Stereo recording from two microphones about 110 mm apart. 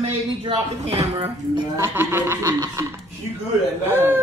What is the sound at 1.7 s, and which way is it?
Speech, 20° right (ahead or behind).